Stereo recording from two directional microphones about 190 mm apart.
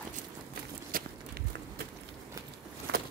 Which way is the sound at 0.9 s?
50° right (ahead or behind).